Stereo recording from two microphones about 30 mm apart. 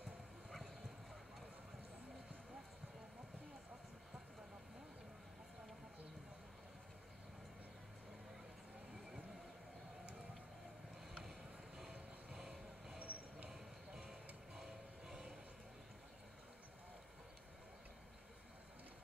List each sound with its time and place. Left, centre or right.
11.9 s vehicle: right
13.0 s a sound: right
13.5 s clip-clop: right
14.6 s music: centre